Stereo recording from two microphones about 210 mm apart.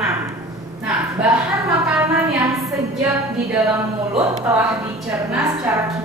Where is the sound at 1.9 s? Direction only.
10° right (ahead or behind).